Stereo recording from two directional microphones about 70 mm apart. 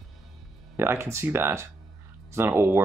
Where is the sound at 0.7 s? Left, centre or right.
Right.